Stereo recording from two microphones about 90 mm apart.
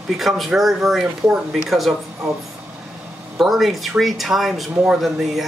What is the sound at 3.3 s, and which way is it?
Speech, centre (ahead or behind).